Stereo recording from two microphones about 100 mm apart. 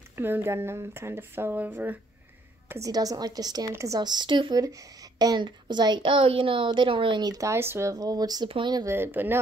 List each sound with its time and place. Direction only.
0.1 s speech: 20° right (ahead or behind)
2.9 s a woman's voice: 40° right (ahead or behind)
4.0 s speech: 45° right (ahead or behind)
4.6 s speech: 40° right (ahead or behind)
8.5 s speech: 60° right (ahead or behind)
8.8 s speech: 25° right (ahead or behind)